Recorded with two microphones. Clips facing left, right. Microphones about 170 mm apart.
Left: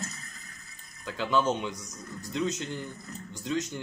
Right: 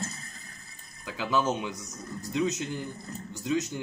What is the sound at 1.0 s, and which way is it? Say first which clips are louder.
Speech: left 1 dB; 10° right (ahead or behind).